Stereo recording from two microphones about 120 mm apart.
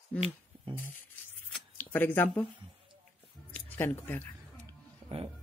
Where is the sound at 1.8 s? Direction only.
15° left (ahead or behind).